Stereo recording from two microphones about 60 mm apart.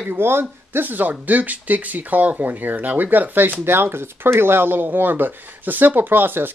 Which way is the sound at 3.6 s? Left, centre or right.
Right.